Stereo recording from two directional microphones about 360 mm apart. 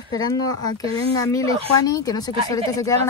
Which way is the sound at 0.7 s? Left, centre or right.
Centre.